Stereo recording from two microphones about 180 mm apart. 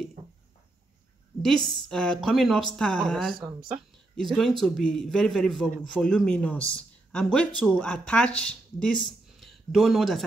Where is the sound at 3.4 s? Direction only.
25° right (ahead or behind).